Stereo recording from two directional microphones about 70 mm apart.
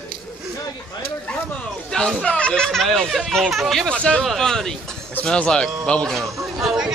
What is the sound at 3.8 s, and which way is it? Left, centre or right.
A man's voice, centre.